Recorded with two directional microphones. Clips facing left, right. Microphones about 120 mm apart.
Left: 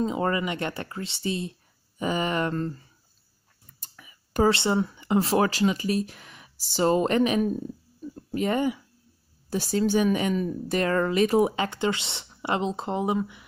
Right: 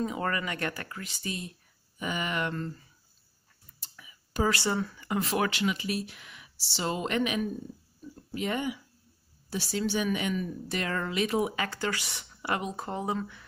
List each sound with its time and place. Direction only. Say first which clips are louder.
0.0 s speech: left 5 dB; 25° left (ahead or behind)
3.8 s a sound: left 2 dB; 50° left (ahead or behind)
4.5 s speech: left 5 dB; 20° left (ahead or behind); by 11.5 s 40° left (ahead or behind)
11.5 s speech: left 5 dB; 25° left (ahead or behind)